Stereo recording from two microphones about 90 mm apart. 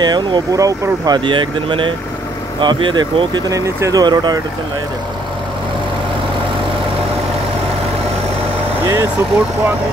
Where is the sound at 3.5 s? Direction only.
40° right (ahead or behind).